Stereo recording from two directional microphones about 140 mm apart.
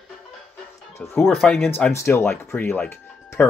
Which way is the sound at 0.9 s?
20° left (ahead or behind).